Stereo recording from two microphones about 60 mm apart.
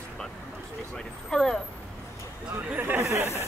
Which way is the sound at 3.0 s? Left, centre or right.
Right.